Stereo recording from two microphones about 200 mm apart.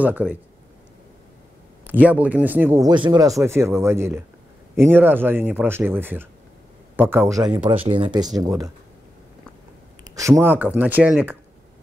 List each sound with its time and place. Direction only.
0.0 s speech: 10° right (ahead or behind)
1.9 s speech: 10° right (ahead or behind)
2.9 s speech: 20° right (ahead or behind)
7.7 s speech: 25° right (ahead or behind)
10.1 s speech: 15° right (ahead or behind)